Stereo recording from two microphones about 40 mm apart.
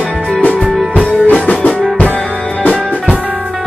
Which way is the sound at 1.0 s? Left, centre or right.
Left.